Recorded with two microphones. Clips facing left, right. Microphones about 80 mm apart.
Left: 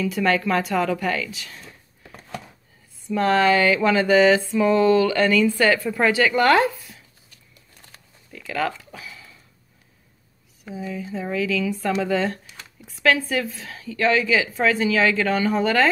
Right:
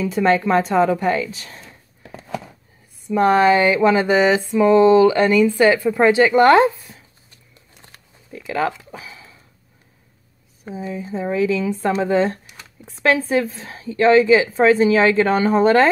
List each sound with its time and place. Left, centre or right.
0.0 s a woman's voice: right
3.1 s a sound: centre
10.6 s a woman's voice: right